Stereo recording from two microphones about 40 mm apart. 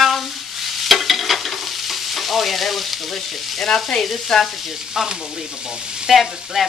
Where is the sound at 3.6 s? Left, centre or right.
Centre.